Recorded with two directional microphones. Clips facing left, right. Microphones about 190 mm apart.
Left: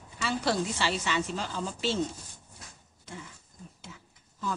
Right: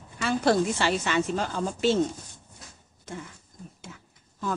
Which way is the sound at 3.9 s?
55° right (ahead or behind).